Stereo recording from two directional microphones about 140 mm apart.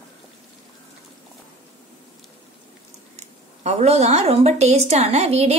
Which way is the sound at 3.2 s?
50° right (ahead or behind).